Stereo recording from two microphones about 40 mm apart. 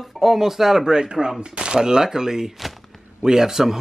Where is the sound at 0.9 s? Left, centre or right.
Centre.